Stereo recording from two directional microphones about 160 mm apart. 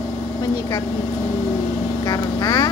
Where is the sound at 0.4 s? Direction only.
20° left (ahead or behind).